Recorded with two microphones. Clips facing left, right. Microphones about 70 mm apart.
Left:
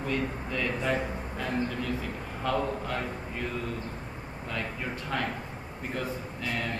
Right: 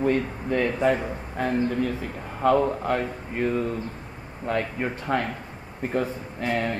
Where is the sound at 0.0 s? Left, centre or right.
Right.